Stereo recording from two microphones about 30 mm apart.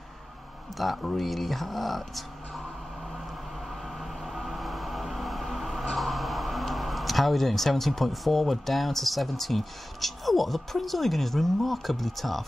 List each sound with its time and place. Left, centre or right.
0.7 s speech: centre
4.0 s train: centre
5.9 s speech: centre